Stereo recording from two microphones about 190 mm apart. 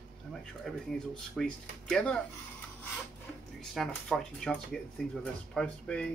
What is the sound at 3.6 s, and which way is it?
Speech, 5° left (ahead or behind).